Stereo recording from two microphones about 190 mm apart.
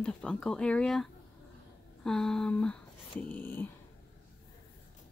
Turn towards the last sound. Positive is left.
turn(degrees=10)  # may be behind; listen again after turning